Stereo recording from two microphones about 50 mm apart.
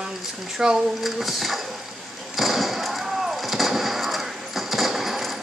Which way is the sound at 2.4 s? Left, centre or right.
Centre.